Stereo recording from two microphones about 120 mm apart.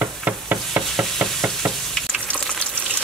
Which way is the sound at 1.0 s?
5° right (ahead or behind).